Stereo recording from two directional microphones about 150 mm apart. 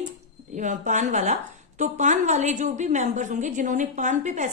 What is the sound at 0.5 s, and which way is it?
A woman's voice, 55° right (ahead or behind).